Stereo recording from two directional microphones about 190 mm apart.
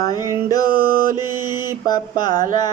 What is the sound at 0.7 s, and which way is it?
Mantra, 50° right (ahead or behind).